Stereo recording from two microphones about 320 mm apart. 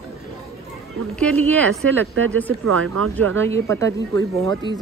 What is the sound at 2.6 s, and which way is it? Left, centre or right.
Speech, right.